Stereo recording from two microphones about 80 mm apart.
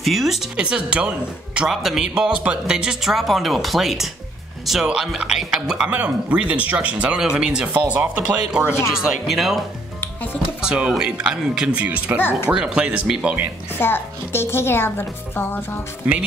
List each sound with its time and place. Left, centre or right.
0.0 s speech: centre
0.6 s speech: centre
1.7 s speech: centre
9.9 s music: left
10.6 s speech: centre
12.2 s a woman's voice: left
12.4 s speech: centre
13.7 s a woman's voice: left